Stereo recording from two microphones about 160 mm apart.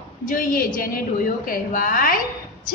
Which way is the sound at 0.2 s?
55° left (ahead or behind).